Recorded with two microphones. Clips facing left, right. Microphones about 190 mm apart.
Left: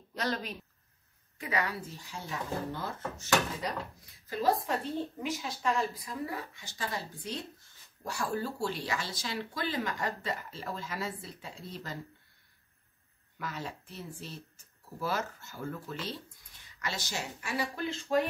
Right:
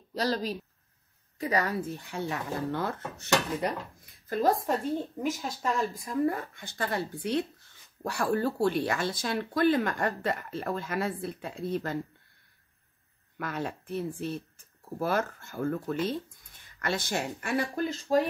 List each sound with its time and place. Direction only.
0.1 s speech: 35° right (ahead or behind); by 2.9 s 65° right (ahead or behind)
4.3 s speech: 50° right (ahead or behind)
13.4 s speech: 55° right (ahead or behind); by 18.2 s 40° right (ahead or behind)